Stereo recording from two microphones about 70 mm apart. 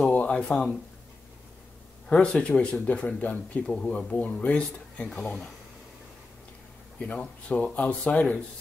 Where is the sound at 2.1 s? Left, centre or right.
Centre.